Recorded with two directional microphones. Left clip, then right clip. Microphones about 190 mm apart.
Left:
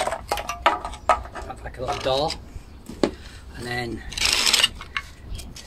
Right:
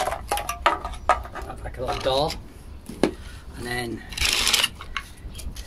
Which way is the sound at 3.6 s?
15° right (ahead or behind).